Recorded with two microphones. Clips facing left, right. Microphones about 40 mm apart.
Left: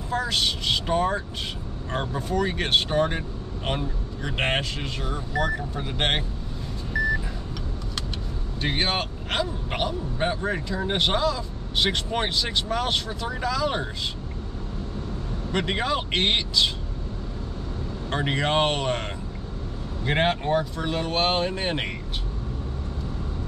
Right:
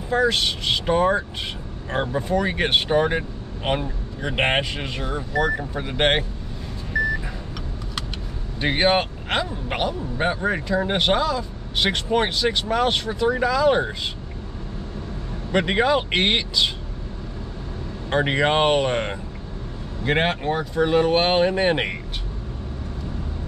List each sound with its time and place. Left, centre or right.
0.1 s speech: centre
8.5 s speech: centre
15.5 s speech: centre
18.1 s speech: centre